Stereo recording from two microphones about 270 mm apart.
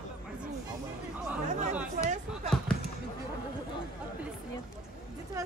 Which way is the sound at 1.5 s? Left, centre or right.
Right.